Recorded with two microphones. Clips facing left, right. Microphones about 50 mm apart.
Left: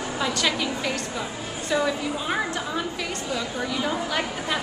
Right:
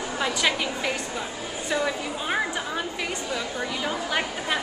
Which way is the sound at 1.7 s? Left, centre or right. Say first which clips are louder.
Left 3 dB; centre.